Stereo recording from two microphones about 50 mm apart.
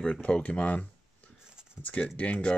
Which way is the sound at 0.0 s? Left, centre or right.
Centre.